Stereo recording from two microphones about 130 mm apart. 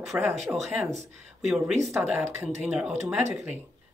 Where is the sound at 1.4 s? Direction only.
Centre (ahead or behind).